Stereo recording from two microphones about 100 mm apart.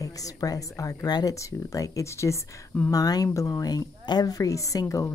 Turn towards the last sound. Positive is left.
turn(degrees=30)  # may be behind; listen again after turning